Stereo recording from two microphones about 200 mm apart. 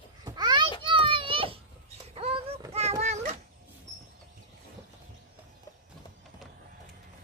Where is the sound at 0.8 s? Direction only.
25° right (ahead or behind).